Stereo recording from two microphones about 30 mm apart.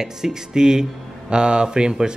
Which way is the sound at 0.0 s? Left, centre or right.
Right.